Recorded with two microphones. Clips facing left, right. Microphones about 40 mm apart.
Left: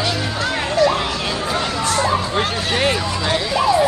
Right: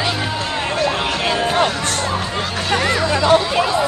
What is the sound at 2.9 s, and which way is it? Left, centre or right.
Chatter, right.